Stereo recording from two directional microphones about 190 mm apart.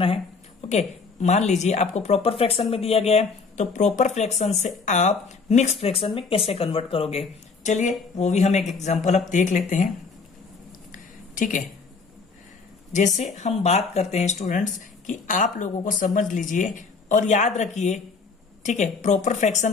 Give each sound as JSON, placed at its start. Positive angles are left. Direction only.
{"t": 0.0, "sound": "speech", "side_deg": 30}
{"t": 10.9, "sound": "a sound", "side_deg": 45}
{"t": 13.4, "sound": "speech", "side_deg": 35}